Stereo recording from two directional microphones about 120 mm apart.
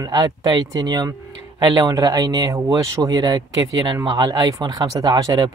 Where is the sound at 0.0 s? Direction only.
30° right (ahead or behind).